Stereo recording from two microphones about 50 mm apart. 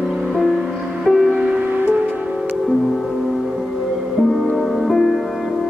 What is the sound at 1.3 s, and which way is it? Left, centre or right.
Music, centre.